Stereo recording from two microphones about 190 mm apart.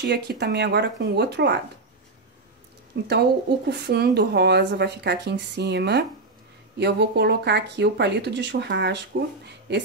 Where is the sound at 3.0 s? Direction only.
60° right (ahead or behind).